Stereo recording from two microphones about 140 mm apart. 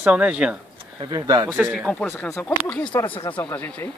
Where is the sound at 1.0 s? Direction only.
30° right (ahead or behind).